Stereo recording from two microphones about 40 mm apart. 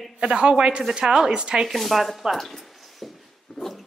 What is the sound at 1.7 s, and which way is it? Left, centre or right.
Speech, centre.